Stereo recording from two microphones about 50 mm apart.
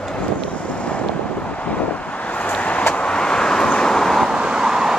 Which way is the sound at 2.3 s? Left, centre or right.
Left.